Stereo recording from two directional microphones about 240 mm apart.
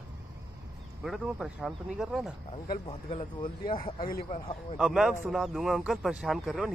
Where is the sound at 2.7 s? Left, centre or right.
Left.